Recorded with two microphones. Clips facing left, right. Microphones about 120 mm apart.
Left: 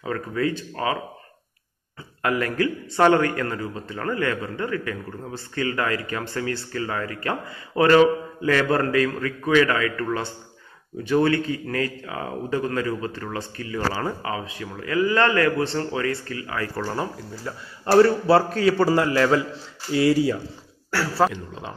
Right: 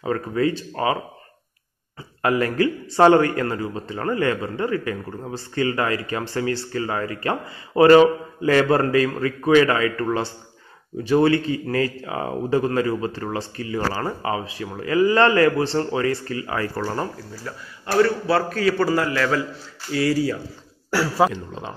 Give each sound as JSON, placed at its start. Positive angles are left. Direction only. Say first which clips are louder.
{"t": 0.0, "sound": "a man's voice", "louder": "right 3 dB", "side_deg": -25}
{"t": 2.2, "sound": "a man's voice", "louder": "right 3 dB", "side_deg": -25}
{"t": 3.2, "sound": "a man's voice", "louder": "right 3 dB", "side_deg": -30}
{"t": 16.7, "sound": "speech", "louder": "right 1 dB", "side_deg": 0}
{"t": 17.4, "sound": "a man's voice", "louder": "left 1 dB", "side_deg": 20}
{"t": 17.8, "sound": "a man's voice", "louder": "left 3 dB", "side_deg": 30}
{"t": 21.2, "sound": "a man's voice", "louder": "right 1 dB", "side_deg": -5}